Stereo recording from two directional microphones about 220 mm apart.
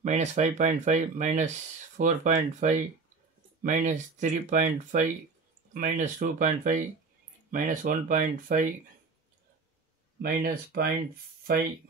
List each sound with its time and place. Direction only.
0.0 s speech: 30° right (ahead or behind)
10.2 s speech: 45° right (ahead or behind)